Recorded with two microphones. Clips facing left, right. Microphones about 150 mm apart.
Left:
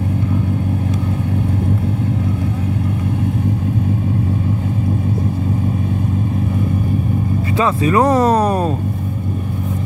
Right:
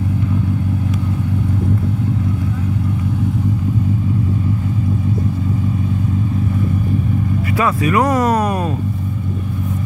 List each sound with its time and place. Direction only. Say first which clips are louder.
7.5 s speech: left 2 dB; 25° left (ahead or behind)